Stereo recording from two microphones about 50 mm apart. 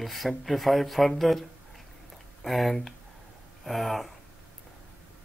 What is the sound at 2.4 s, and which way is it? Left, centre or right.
Speech, centre.